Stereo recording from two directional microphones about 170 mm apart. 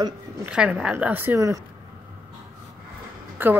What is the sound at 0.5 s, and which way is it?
A woman's voice, 5° right (ahead or behind).